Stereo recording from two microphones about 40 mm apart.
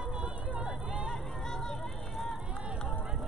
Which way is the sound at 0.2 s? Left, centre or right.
Right.